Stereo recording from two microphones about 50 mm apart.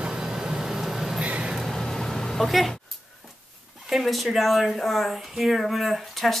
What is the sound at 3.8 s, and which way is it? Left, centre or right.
Speech, centre.